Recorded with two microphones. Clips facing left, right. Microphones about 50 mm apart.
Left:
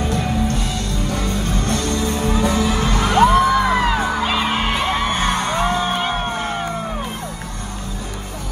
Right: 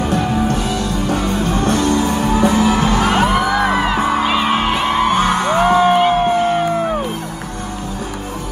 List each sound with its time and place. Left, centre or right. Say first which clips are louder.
0.1 s music: right 4 dB; right
0.7 s music: right 5 dB; left
1.0 s music: right 4 dB; right
3.8 s music: right 3 dB; right
5.4 s music: right 7 dB; right